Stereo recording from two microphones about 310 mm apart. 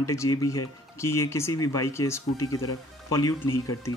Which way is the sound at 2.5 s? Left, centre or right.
Left.